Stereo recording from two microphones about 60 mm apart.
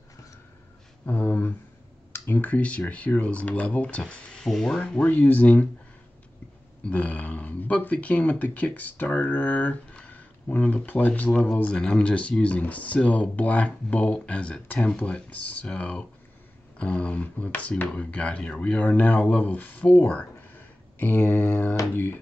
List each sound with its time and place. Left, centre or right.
1.0 s speech: left
4.5 s speech: centre
5.0 s speech: left
6.8 s speech: left